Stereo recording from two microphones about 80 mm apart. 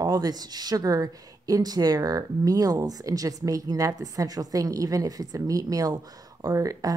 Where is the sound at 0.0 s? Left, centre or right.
Right.